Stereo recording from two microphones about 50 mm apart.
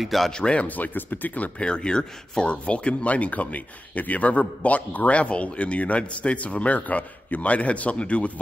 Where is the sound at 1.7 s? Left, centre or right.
Centre.